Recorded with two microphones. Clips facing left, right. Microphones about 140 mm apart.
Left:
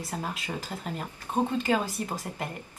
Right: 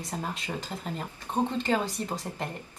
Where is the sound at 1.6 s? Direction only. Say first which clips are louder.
Left 1 dB; 5° left (ahead or behind).